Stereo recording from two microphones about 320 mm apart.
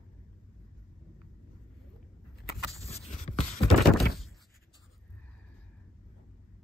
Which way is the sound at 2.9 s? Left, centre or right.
Centre.